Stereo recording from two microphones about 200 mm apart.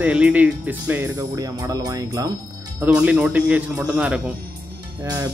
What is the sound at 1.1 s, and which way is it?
Speech, 20° right (ahead or behind).